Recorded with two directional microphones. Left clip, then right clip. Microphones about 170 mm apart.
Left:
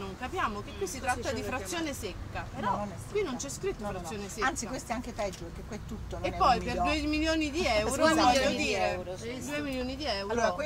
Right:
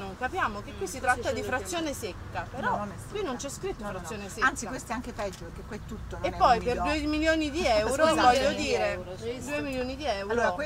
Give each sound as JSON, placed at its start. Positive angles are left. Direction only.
{"t": 0.0, "sound": "speech", "side_deg": -15}
{"t": 4.4, "sound": "speech", "side_deg": 15}
{"t": 6.2, "sound": "speech", "side_deg": -15}
{"t": 10.2, "sound": "speech", "side_deg": 20}